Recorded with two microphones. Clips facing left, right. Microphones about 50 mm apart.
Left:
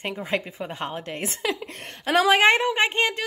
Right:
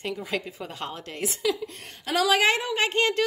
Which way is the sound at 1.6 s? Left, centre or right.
Left.